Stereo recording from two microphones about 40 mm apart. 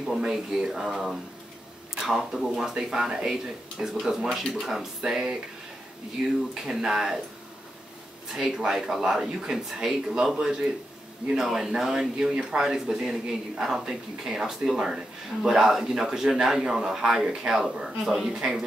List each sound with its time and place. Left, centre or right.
0.0 s a man's voice: centre
2.0 s a man's voice: centre
3.3 s a man's voice: centre
6.5 s a man's voice: centre
8.4 s a man's voice: centre
17.8 s a man's voice: centre